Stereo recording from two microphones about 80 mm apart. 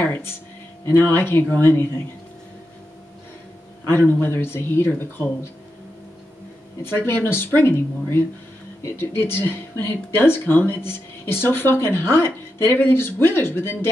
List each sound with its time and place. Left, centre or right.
0.0 s speech: left
3.8 s speech: left
6.8 s speech: left